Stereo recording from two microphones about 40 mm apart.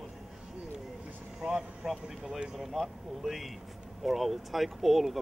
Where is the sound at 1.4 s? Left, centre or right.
Centre.